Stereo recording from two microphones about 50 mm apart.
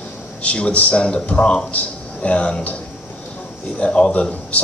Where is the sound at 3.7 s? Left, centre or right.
Left.